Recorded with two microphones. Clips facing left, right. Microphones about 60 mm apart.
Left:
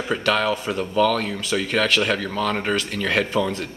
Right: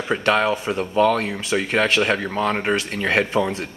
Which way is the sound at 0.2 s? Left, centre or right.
Right.